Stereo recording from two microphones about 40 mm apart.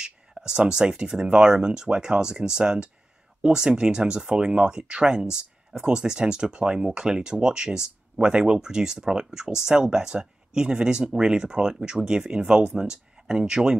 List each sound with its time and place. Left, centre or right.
0.0 s speech: centre